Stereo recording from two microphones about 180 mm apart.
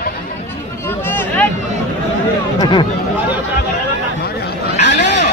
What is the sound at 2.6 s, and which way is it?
Speech, 25° left (ahead or behind).